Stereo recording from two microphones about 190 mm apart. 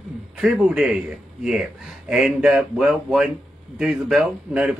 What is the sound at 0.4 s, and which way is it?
Speech, centre (ahead or behind).